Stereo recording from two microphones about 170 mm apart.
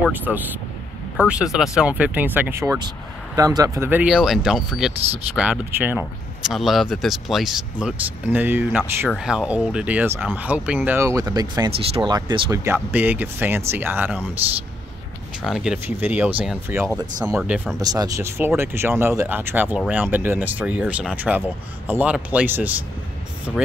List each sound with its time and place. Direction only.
0.0 s speech: 10° right (ahead or behind)
6.5 s speech: centre (ahead or behind); by 12.5 s 25° right (ahead or behind)
12.6 s speech: 10° right (ahead or behind)
15.4 s speech: 5° right (ahead or behind)
16.9 s speech: 20° right (ahead or behind)
17.4 s speech: 5° right (ahead or behind)
17.7 s speech: 20° right (ahead or behind); by 23.6 s 5° right (ahead or behind)